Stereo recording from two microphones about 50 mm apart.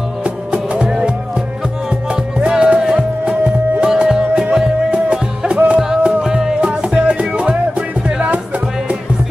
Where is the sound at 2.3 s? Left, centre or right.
Centre.